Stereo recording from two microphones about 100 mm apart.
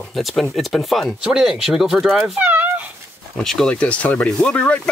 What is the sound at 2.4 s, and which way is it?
Cat, 15° right (ahead or behind).